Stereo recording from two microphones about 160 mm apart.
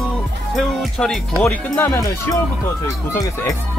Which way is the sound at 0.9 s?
Centre (ahead or behind).